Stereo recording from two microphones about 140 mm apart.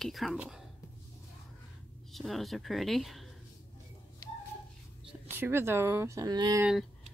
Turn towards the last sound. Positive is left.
turn(degrees=-30)  # may be behind; listen again after turning